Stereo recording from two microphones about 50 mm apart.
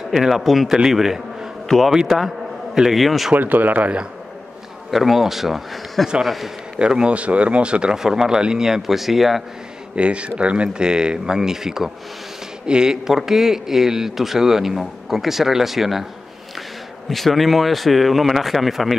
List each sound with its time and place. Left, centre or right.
0.3 s speech: centre
1.7 s a man's voice: centre
3.3 s speech: right
4.9 s speech: centre
6.8 s a man's voice: centre
9.9 s a man's voice: right; by 16.1 s centre
17.1 s speech: centre